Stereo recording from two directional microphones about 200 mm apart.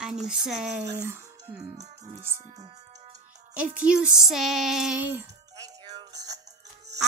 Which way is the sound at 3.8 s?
5° right (ahead or behind).